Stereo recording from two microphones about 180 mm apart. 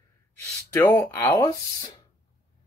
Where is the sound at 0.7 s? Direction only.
15° left (ahead or behind).